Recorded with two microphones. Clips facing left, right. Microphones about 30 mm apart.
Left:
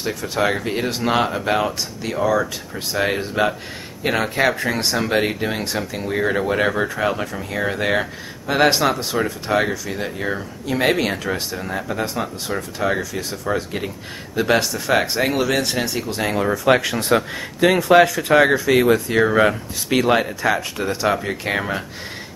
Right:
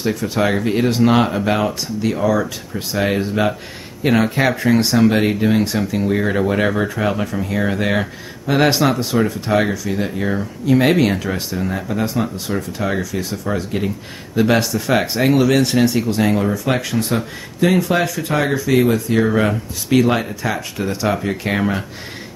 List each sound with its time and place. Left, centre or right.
0.0 s speech: centre
16.4 s speech: left; by 21.8 s centre